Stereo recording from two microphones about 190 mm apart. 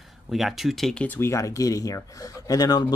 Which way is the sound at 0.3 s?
Centre (ahead or behind).